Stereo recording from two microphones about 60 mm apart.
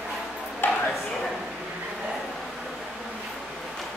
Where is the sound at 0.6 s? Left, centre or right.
Left.